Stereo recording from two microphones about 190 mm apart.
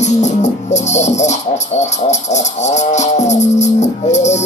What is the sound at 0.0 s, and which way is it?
Music, 35° left (ahead or behind).